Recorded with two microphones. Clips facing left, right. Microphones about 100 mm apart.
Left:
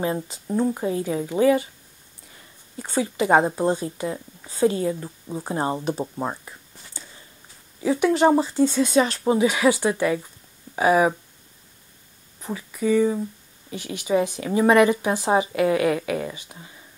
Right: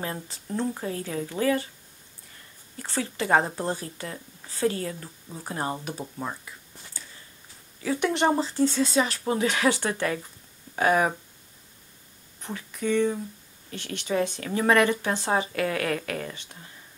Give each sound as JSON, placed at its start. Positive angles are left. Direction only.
{"t": 0.0, "sound": "speech", "side_deg": 15}
{"t": 2.8, "sound": "speech", "side_deg": 15}
{"t": 7.0, "sound": "a sound", "side_deg": 20}
{"t": 8.0, "sound": "speech", "side_deg": 5}
{"t": 9.4, "sound": "speech", "side_deg": 10}
{"t": 12.4, "sound": "speech", "side_deg": 5}